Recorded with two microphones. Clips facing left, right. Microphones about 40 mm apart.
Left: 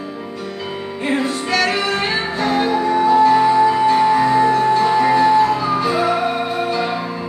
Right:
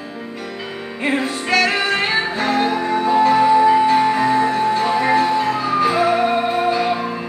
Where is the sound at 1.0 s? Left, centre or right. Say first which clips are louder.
Even; centre.